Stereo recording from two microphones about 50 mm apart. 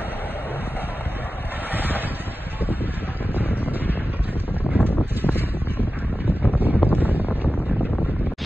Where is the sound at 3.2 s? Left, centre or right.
Right.